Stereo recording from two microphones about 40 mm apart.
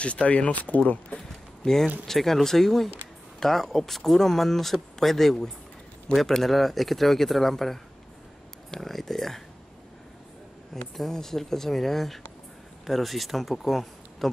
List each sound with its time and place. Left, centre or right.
0.0 s speech: left
1.6 s speech: centre
10.7 s speech: centre